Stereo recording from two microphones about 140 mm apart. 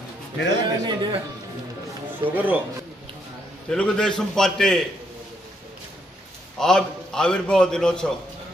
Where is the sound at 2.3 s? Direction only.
15° right (ahead or behind).